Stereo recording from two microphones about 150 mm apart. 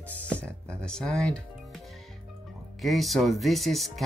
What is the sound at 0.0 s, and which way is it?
Music, 10° left (ahead or behind).